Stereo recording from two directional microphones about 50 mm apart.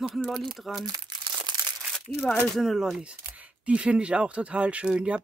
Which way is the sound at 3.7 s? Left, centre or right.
Right.